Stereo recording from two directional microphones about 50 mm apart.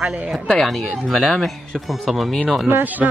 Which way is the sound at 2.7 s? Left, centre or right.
Right.